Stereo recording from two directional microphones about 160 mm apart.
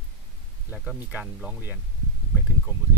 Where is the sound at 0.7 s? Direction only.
5° right (ahead or behind).